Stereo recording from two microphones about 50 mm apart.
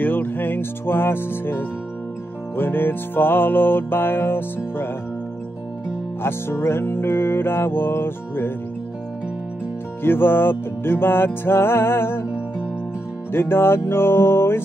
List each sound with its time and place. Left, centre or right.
0.0 s speech: left
2.5 s music: left
6.2 s music: left
10.0 s music: left
13.3 s music: left